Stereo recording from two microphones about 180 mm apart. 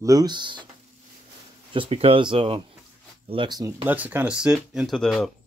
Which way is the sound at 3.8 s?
10° right (ahead or behind).